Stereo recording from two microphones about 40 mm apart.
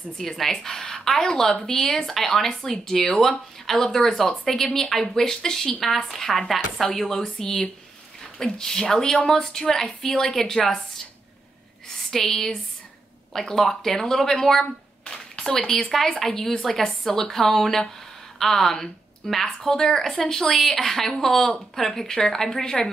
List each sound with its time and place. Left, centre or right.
0.2 s a woman's voice: centre
12.1 s a woman's voice: centre